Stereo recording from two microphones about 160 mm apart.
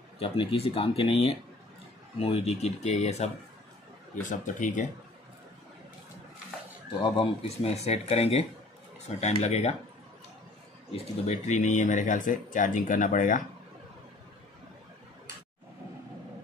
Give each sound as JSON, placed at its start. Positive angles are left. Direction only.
{"t": 0.2, "sound": "speech", "side_deg": 35}
{"t": 7.0, "sound": "speech", "side_deg": 35}
{"t": 10.9, "sound": "speech", "side_deg": 45}